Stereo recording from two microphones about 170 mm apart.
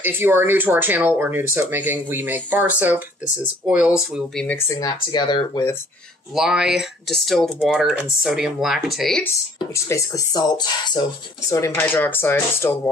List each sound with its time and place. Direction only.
0.0 s speech: 15° right (ahead or behind)
4.5 s speech: 15° left (ahead or behind)
6.3 s speech: 5° right (ahead or behind)
9.8 s speech: 15° left (ahead or behind)